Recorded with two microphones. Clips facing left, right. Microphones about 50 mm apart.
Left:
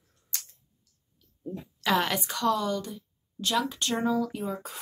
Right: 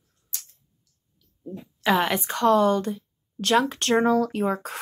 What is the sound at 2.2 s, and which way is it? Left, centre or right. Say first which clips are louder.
Speech: right 8 dB; right.